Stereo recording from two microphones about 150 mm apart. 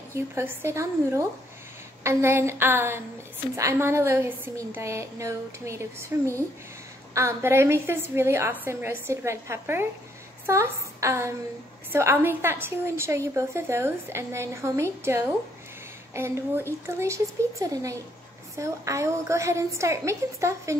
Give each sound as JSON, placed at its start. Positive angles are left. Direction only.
{"t": 0.1, "sound": "a woman's voice", "side_deg": -15}
{"t": 7.2, "sound": "a woman's voice", "side_deg": -15}